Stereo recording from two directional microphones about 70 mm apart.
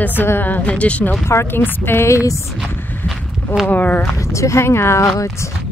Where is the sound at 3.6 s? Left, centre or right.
Left.